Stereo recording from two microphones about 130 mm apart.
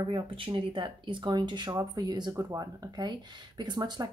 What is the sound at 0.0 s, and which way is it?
Speech, 40° right (ahead or behind).